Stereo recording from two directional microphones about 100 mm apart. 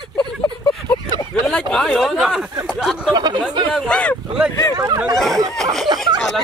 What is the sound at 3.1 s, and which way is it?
Speech, 45° right (ahead or behind).